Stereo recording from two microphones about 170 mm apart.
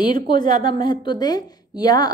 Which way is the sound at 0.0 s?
25° left (ahead or behind).